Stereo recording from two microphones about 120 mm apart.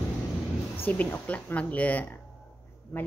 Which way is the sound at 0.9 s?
15° left (ahead or behind).